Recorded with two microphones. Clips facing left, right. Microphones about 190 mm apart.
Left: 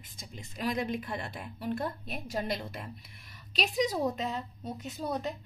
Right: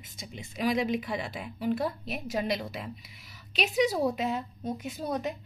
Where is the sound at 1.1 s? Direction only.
5° right (ahead or behind).